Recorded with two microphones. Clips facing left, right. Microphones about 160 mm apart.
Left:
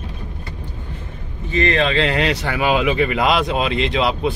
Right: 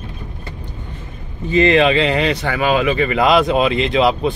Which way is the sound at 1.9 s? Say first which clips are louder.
Right 2 dB; centre (ahead or behind).